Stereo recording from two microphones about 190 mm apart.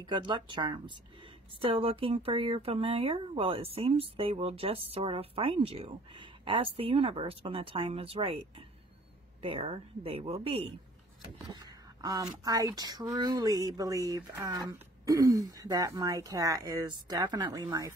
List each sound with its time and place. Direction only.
0.0 s speech: 25° right (ahead or behind)